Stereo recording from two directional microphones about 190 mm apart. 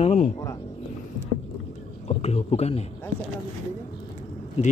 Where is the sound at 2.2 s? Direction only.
35° left (ahead or behind).